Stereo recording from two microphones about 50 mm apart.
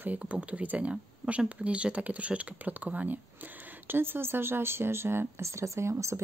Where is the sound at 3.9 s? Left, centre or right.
Right.